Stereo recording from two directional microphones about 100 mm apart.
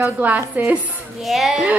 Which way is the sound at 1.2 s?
5° right (ahead or behind).